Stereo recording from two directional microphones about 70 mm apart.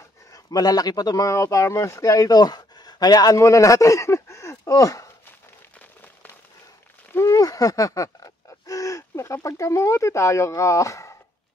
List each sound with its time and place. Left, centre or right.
0.3 s speech: left
3.3 s speech: left
7.2 s owl: left